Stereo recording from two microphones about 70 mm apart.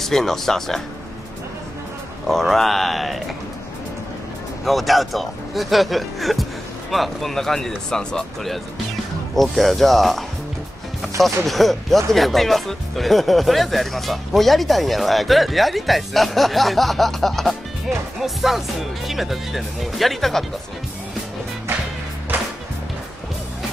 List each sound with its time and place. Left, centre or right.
0.0 s speech: centre
2.2 s speech: centre
4.6 s speech: centre
22.3 s music: right